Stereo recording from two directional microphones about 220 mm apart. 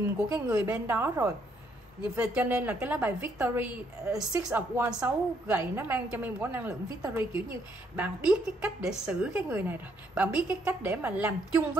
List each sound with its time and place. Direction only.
0.3 s a woman's voice: 10° right (ahead or behind)